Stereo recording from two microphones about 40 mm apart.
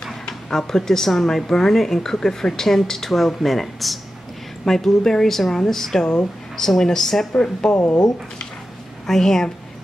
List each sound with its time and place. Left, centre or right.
0.3 s speech: centre
7.7 s speech: left
9.0 s speech: centre